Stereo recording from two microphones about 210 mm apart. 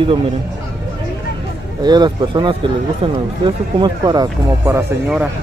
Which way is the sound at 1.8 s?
20° right (ahead or behind).